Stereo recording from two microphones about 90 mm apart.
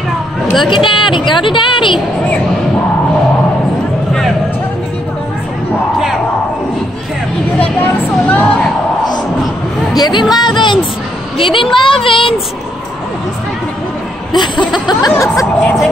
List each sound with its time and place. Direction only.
0.7 s speech: 65° left (ahead or behind)
8.3 s music: 10° left (ahead or behind)
9.9 s speech: 50° left (ahead or behind)
11.3 s a child's voice: 75° left (ahead or behind)
14.9 s speech: 45° left (ahead or behind)
15.6 s speech: 5° left (ahead or behind)